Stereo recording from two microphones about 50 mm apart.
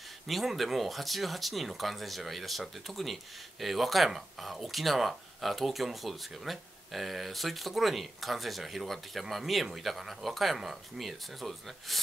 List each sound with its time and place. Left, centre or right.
0.3 s speech: centre